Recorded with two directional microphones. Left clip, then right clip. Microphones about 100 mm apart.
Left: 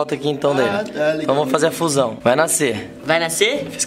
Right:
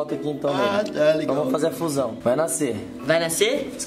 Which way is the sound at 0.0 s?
40° left (ahead or behind).